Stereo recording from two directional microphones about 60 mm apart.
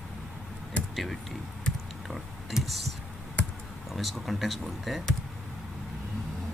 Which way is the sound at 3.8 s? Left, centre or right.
Centre.